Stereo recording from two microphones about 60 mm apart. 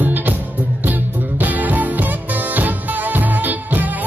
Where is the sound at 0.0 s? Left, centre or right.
Right.